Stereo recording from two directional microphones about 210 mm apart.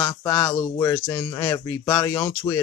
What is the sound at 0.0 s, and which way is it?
Speech, 10° left (ahead or behind).